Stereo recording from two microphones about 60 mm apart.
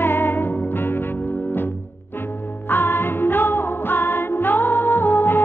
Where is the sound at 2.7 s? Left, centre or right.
Left.